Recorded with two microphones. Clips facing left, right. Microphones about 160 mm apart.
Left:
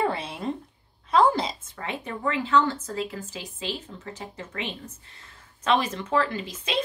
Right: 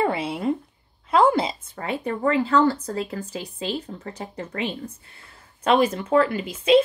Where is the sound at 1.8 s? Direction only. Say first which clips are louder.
Right 7 dB; 40° right (ahead or behind).